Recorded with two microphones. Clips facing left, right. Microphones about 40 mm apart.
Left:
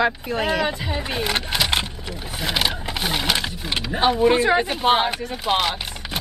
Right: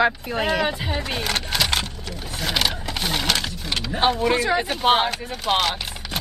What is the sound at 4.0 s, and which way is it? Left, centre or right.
Speech, centre.